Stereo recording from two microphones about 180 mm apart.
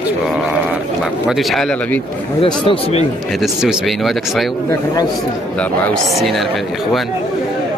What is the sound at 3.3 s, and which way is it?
Speech, centre (ahead or behind).